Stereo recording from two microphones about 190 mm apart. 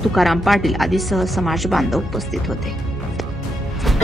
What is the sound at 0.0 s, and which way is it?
A woman's voice, centre (ahead or behind).